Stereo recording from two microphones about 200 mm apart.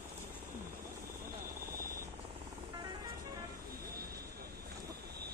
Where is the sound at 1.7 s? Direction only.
45° right (ahead or behind).